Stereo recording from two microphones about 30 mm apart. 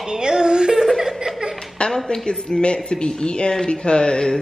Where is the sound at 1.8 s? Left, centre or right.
Left.